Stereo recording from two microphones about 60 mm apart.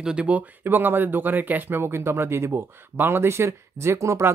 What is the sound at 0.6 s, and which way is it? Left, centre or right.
Speech, right.